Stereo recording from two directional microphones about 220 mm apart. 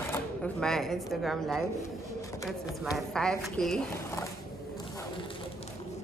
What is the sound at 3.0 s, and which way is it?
Speech, centre (ahead or behind).